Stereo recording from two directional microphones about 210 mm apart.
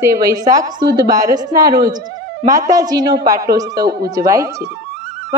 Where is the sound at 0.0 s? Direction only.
15° right (ahead or behind).